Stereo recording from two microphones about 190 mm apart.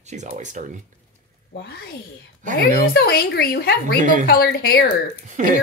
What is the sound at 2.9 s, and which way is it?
Speech, 55° left (ahead or behind).